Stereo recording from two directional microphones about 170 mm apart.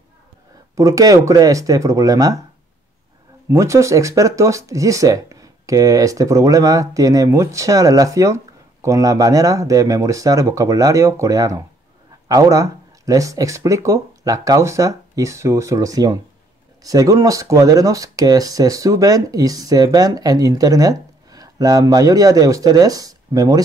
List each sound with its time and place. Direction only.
0.7 s speech: 20° right (ahead or behind)
3.4 s speech: 15° right (ahead or behind)